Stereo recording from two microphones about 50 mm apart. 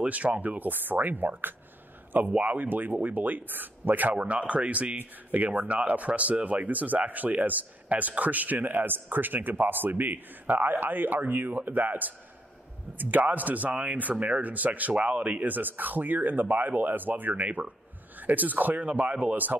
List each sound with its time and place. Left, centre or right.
0.0 s speech: right
15.5 s speech: right